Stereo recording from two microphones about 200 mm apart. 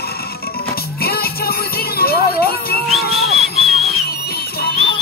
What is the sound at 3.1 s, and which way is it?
Whistle, centre (ahead or behind).